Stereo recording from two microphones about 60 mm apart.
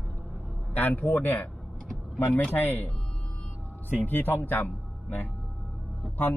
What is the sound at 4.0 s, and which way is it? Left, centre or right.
Speech, left.